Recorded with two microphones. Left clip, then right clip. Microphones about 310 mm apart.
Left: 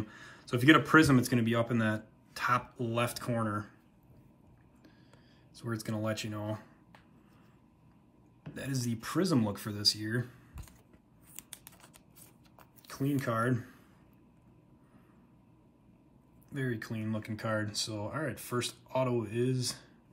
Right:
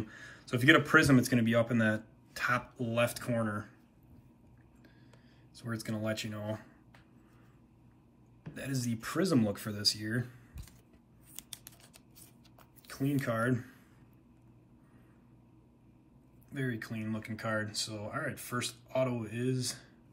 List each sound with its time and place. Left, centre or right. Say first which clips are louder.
0.1 s speech: left 1 dB; centre
5.5 s speech: left 1 dB; centre
8.5 s speech: even; centre
12.5 s a sound: even; centre
16.4 s speech: left 1 dB; centre